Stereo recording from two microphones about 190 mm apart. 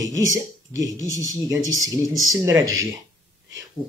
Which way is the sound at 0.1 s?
90° right.